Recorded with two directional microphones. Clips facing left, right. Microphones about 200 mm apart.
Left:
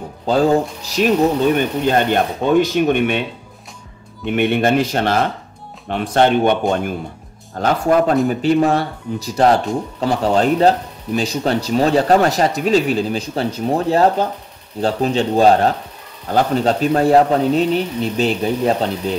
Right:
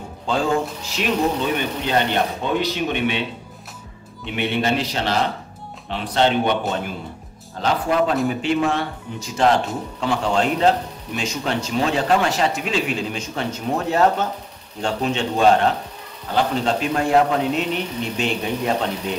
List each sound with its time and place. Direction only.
0.3 s speech: 40° left (ahead or behind)
4.3 s speech: 50° left (ahead or behind); by 18.9 s 35° left (ahead or behind)